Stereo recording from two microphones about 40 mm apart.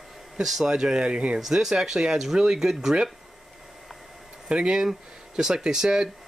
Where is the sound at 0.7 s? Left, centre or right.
Centre.